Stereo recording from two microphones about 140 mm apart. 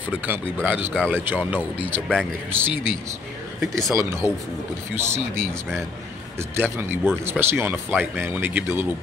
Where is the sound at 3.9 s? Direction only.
20° right (ahead or behind).